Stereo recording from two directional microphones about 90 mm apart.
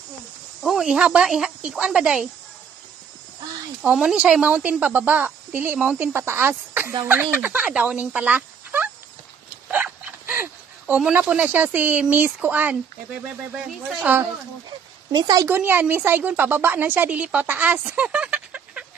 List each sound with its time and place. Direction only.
0.6 s speech: centre (ahead or behind)
3.8 s speech: 10° right (ahead or behind)
9.7 s dog: 15° right (ahead or behind)
11.1 s a woman's voice: 15° right (ahead or behind)
15.0 s a woman's voice: 55° right (ahead or behind)
15.4 s a woman's voice: 25° right (ahead or behind)